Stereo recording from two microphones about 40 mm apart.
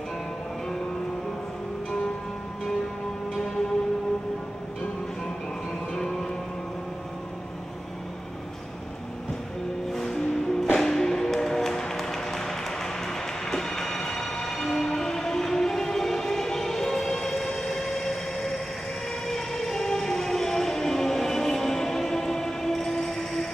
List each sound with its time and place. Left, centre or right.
5.9 s music: centre
9.9 s music: centre